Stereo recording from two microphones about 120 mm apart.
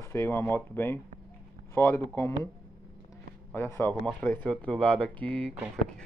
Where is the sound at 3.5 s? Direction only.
20° left (ahead or behind).